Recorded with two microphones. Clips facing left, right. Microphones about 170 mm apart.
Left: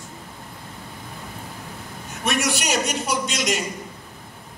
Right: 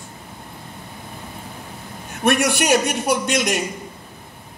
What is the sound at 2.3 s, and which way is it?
A man's voice, 55° right (ahead or behind).